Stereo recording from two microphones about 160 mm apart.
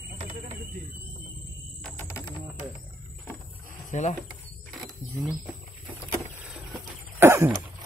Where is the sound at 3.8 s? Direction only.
50° left (ahead or behind).